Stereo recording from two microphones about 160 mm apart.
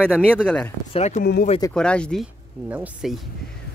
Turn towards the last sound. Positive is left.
turn(degrees=0)  # may be behind; listen again after turning